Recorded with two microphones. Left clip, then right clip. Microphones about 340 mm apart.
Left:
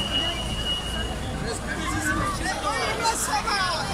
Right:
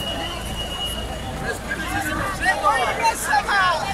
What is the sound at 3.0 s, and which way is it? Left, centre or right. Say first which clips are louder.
Vehicle: right 5 dB; right.